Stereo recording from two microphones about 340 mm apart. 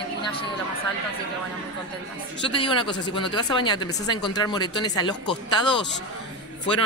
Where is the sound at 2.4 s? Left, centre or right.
Centre.